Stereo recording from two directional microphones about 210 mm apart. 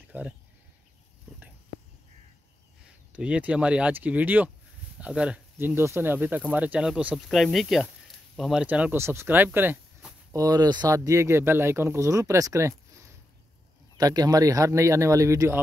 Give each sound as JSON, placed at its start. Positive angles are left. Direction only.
{"t": 0.1, "sound": "speech", "side_deg": -10}
{"t": 3.1, "sound": "speech", "side_deg": -5}
{"t": 13.9, "sound": "speech", "side_deg": -15}